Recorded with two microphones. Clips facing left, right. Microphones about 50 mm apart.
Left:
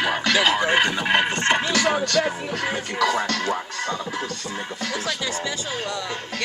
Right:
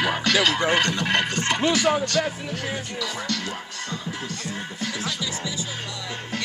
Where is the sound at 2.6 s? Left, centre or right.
Left.